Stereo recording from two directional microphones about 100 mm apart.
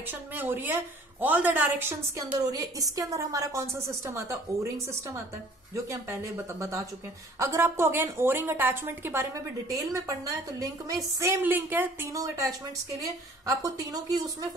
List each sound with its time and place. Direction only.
0.0 s a woman's voice: 20° right (ahead or behind)
2.4 s a woman's voice: 40° right (ahead or behind)
5.9 s a woman's voice: 30° right (ahead or behind)
9.7 s a woman's voice: 35° right (ahead or behind); by 12.1 s 20° right (ahead or behind)
12.1 s a woman's voice: 35° right (ahead or behind)